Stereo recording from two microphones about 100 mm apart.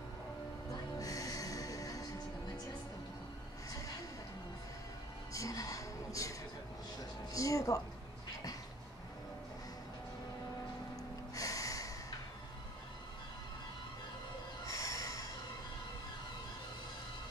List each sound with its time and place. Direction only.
0.9 s music: 35° left (ahead or behind)
5.3 s a sound: 35° left (ahead or behind)
7.0 s music: 35° left (ahead or behind)
11.3 s music: 35° left (ahead or behind)
14.7 s snort: 35° left (ahead or behind)